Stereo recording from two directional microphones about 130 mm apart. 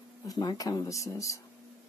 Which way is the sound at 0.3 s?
30° left (ahead or behind).